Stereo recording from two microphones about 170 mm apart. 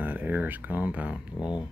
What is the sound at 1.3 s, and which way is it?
Speech, 25° left (ahead or behind).